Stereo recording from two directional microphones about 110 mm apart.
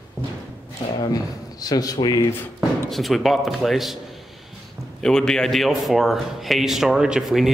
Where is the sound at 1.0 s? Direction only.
35° left (ahead or behind).